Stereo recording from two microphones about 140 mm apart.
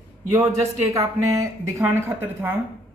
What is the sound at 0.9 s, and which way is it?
Speech, 20° right (ahead or behind).